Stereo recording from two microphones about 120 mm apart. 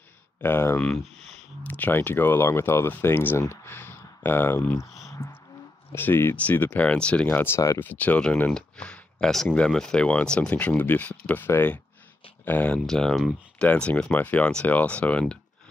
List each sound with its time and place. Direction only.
0.4 s speech: 20° left (ahead or behind)
5.9 s speech: 20° left (ahead or behind)